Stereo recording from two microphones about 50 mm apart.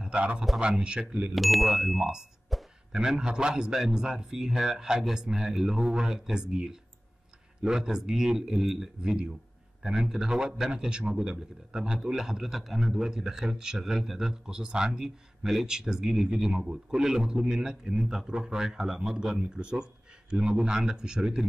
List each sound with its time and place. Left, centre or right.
0.0 s a man's voice: right
1.3 s a man's voice: centre